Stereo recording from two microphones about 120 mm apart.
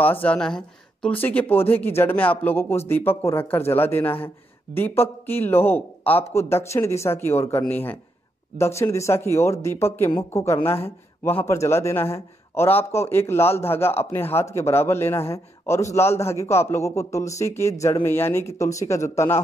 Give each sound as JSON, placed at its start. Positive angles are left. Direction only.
{"t": 0.0, "sound": "a man's voice", "side_deg": 15}